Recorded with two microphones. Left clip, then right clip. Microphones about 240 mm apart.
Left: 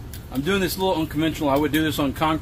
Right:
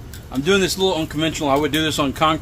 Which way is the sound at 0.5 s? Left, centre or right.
Right.